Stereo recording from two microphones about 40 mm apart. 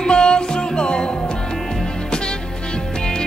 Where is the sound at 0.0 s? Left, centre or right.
Centre.